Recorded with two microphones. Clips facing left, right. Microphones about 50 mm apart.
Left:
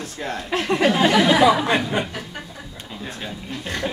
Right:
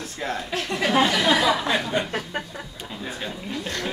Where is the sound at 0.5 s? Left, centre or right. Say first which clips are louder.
Left 8 dB; left.